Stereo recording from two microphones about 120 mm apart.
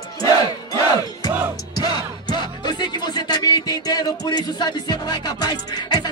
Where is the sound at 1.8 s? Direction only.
35° left (ahead or behind).